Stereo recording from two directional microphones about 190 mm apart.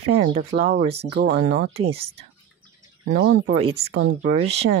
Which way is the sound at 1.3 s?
45° right (ahead or behind).